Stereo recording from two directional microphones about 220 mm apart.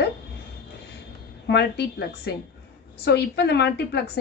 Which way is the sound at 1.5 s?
50° left (ahead or behind).